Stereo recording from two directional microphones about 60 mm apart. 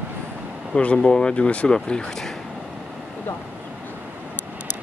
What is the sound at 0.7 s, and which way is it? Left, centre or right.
Speech, centre.